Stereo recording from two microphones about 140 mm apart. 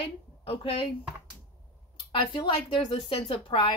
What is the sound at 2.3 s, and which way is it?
A woman's voice, 35° left (ahead or behind).